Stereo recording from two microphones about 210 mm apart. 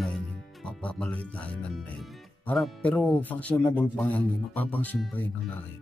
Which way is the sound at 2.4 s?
5° left (ahead or behind).